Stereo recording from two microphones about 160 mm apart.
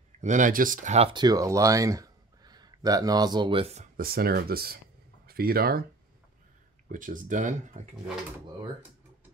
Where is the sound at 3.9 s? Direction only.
70° right (ahead or behind).